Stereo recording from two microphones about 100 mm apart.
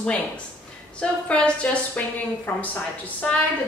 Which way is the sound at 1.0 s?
10° left (ahead or behind).